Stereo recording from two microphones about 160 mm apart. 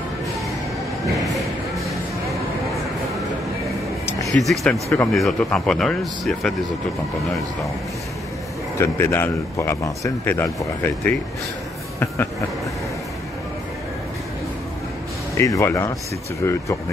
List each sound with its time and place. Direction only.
4.3 s speech: centre (ahead or behind)
4.8 s speech: 15° left (ahead or behind)
5.1 s speech: 5° left (ahead or behind)
8.7 s speech: 15° left (ahead or behind)
15.3 s speech: 20° left (ahead or behind)